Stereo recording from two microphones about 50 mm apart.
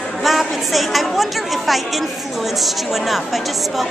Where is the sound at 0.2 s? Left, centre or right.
Centre.